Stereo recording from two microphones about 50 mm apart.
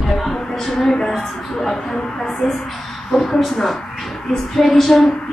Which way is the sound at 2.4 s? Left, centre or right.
Centre.